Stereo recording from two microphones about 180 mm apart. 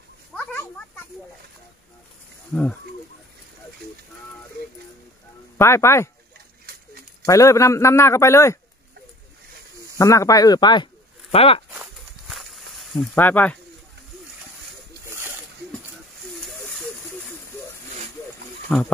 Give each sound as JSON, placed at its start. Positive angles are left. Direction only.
{"t": 0.3, "sound": "a sound", "side_deg": 10}
{"t": 2.5, "sound": "a man's voice", "side_deg": 5}
{"t": 5.6, "sound": "a man's voice", "side_deg": 15}
{"t": 7.2, "sound": "a man's voice", "side_deg": 15}
{"t": 9.9, "sound": "speech", "side_deg": 15}
{"t": 11.7, "sound": "snake", "side_deg": 0}
{"t": 13.1, "sound": "a man's voice", "side_deg": 10}
{"t": 15.0, "sound": "a sound", "side_deg": -15}
{"t": 18.7, "sound": "a man's voice", "side_deg": 10}